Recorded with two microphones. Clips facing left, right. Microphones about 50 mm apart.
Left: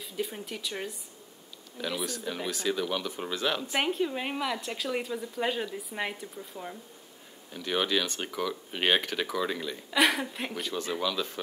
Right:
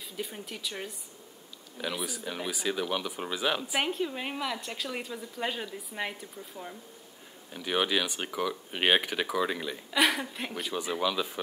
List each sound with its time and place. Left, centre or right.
0.2 s a woman's voice: centre
3.8 s a woman's voice: centre
7.5 s speech: centre
9.8 s speech: centre